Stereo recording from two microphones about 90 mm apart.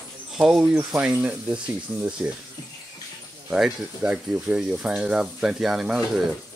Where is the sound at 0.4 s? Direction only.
10° right (ahead or behind).